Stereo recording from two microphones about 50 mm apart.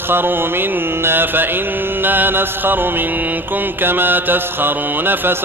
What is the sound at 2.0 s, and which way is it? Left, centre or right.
Music, right.